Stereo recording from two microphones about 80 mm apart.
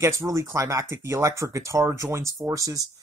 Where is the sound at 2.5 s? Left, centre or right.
Right.